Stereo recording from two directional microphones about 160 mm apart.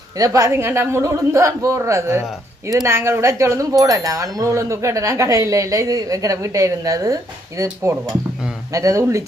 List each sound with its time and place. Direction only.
0.2 s a woman's voice: 20° right (ahead or behind)